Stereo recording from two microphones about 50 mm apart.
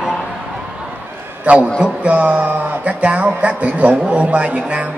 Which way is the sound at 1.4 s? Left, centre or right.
Right.